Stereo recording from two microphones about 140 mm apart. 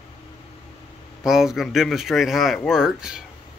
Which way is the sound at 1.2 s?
5° right (ahead or behind).